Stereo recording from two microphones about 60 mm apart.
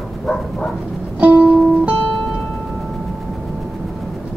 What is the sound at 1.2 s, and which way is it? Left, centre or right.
Music, right.